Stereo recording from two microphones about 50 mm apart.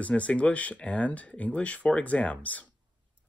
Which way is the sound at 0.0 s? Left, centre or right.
Left.